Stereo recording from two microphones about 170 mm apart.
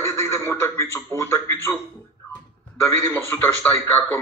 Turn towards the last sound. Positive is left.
turn(degrees=15)  # may be behind; listen again after turning